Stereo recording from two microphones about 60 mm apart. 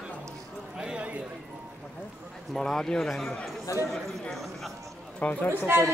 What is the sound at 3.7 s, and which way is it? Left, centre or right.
Speech, left.